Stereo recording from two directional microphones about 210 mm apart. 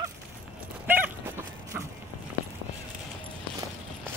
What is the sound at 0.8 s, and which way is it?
Dog, 10° right (ahead or behind).